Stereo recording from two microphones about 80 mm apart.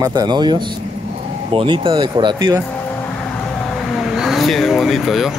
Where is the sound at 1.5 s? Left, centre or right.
Right.